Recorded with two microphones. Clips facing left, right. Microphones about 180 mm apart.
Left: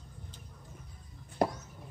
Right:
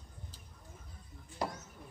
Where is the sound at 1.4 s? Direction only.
50° left (ahead or behind).